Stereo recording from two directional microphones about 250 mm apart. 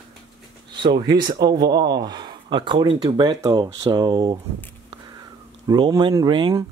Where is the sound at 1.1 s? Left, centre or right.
Centre.